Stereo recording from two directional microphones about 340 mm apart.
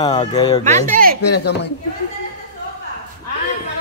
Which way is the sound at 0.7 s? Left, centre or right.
Right.